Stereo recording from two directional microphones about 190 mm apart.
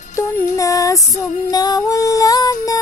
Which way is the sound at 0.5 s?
15° left (ahead or behind).